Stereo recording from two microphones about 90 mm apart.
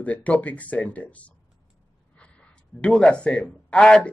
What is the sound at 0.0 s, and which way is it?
Speech, 15° left (ahead or behind).